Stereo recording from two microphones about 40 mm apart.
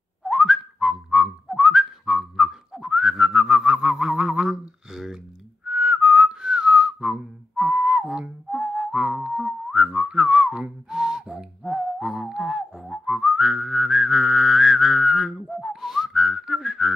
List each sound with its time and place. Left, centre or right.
0.3 s whistling: centre
3.8 s a sound: centre
5.7 s whistling: right; by 16.9 s centre